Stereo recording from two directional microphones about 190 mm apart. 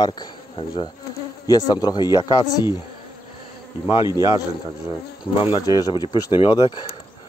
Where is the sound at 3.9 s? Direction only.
20° left (ahead or behind).